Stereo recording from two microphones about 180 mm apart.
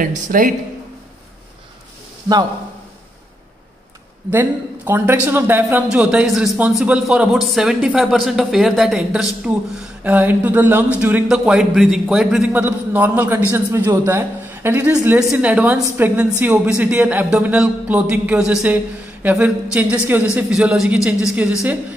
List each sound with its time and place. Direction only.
0.3 s speech: 45° right (ahead or behind)
4.3 s a man's voice: 10° right (ahead or behind)